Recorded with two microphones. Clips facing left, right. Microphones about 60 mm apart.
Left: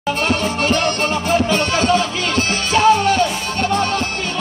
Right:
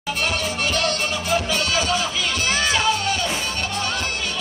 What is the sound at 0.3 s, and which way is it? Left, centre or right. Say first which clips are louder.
Music: left 7 dB; left.